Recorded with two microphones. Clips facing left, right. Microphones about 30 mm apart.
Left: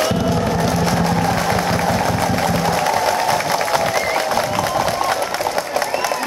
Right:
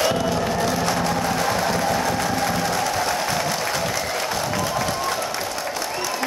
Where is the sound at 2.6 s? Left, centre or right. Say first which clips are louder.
Left 5 dB; left.